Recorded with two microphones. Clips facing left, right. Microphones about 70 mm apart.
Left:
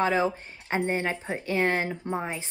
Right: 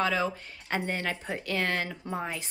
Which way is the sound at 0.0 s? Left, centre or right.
Left.